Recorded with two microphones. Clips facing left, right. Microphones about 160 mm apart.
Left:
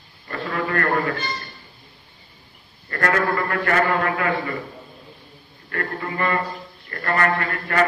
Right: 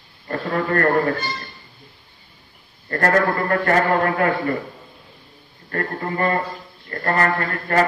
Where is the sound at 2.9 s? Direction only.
40° right (ahead or behind).